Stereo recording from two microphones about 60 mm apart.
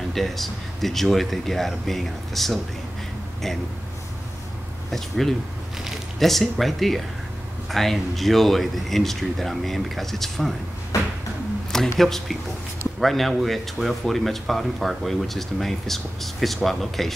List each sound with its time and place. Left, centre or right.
0.1 s speech: centre
4.9 s speech: centre
10.9 s a sound: left
12.0 s speech: centre